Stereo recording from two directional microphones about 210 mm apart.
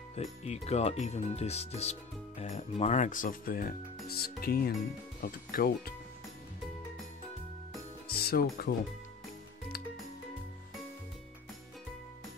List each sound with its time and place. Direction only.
0.1 s speech: 30° left (ahead or behind)
8.1 s speech: 45° left (ahead or behind)